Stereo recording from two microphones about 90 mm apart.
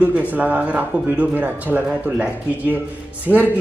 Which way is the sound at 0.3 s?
20° right (ahead or behind).